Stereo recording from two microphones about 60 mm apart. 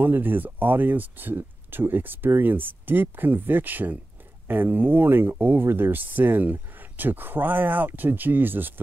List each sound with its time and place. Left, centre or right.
0.0 s speech: right